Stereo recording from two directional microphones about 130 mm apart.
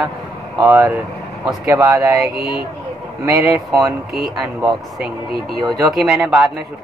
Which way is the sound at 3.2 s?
10° right (ahead or behind).